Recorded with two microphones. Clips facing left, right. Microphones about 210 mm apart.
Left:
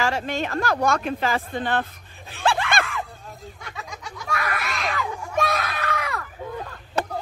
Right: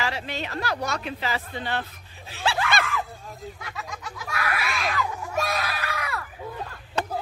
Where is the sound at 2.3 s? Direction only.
50° left (ahead or behind).